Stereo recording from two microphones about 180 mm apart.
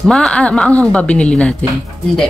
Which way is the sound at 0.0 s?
Centre (ahead or behind).